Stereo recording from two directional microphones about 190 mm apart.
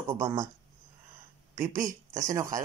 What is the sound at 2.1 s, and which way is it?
Speech, 15° right (ahead or behind).